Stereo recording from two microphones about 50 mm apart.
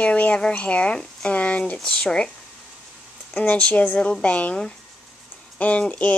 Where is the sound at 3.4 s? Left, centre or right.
Left.